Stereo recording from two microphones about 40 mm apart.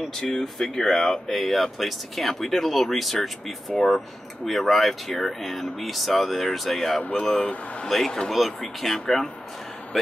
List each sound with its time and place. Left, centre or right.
0.1 s speech: centre
7.0 s speech: left
8.3 s speech: centre